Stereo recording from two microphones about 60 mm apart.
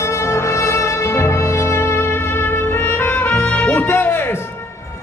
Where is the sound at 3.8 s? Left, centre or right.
Left.